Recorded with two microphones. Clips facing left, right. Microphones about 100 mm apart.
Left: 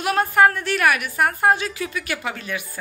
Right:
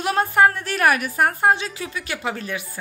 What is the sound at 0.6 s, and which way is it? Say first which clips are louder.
A woman's voice: right 1 dB; 35° right (ahead or behind).